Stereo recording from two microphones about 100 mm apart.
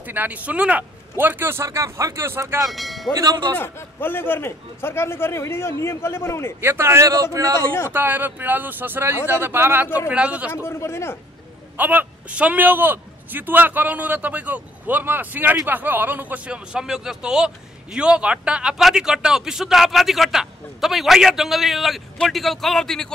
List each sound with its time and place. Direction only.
0.0 s a man's voice: 20° right (ahead or behind)
2.7 s music: centre (ahead or behind)
3.2 s speech: 40° right (ahead or behind)
3.5 s a man's voice: 20° left (ahead or behind)
6.6 s a man's voice: 25° right (ahead or behind)
7.9 s a man's voice: 20° right (ahead or behind)
10.5 s a man's voice: 25° left (ahead or behind)
11.7 s a man's voice: 20° right (ahead or behind); by 23.1 s 5° left (ahead or behind)